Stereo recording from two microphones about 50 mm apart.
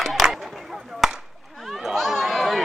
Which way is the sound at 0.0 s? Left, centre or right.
Centre.